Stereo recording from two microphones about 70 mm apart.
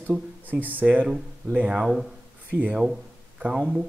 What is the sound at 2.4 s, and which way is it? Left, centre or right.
A man's voice, centre.